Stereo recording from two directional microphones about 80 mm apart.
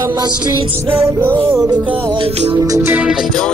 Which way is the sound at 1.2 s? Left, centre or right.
Right.